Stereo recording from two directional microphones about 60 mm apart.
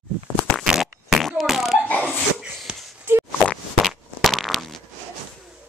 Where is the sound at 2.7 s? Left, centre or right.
Centre.